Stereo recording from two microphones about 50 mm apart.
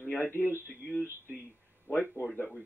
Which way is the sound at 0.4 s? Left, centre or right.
Right.